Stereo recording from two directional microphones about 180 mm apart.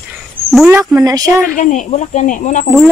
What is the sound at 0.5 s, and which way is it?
Speech, centre (ahead or behind).